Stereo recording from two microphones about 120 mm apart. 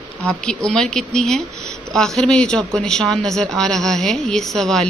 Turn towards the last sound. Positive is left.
turn(degrees=5)  # may be behind; listen again after turning